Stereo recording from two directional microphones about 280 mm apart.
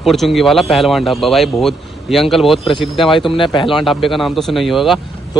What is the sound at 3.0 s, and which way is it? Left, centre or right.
Speech, centre.